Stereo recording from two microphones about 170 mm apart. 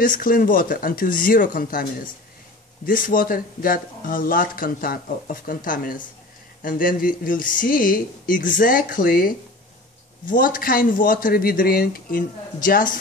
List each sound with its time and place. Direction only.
0.0 s speech: 55° left (ahead or behind)
10.3 s speech: 55° left (ahead or behind)